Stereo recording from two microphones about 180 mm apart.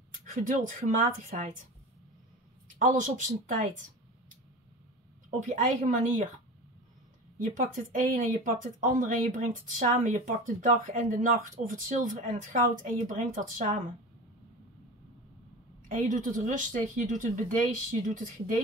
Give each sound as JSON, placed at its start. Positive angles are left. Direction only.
{"t": 0.3, "sound": "speech", "side_deg": -45}
{"t": 2.8, "sound": "speech", "side_deg": -45}
{"t": 5.5, "sound": "speech", "side_deg": -45}
{"t": 7.3, "sound": "speech", "side_deg": -45}
{"t": 15.9, "sound": "speech", "side_deg": -45}